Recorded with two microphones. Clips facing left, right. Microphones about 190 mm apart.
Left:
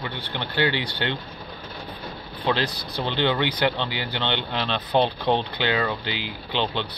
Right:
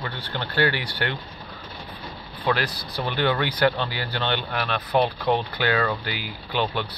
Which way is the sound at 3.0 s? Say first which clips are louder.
Left 1 dB; 20° left (ahead or behind).